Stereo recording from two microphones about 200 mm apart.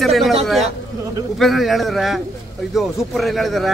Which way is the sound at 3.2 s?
Centre (ahead or behind).